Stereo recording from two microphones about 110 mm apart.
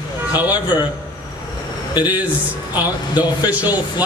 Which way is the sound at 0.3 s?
15° right (ahead or behind).